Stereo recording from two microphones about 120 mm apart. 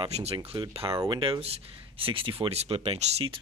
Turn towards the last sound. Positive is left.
turn(degrees=-65)  # may be behind; listen again after turning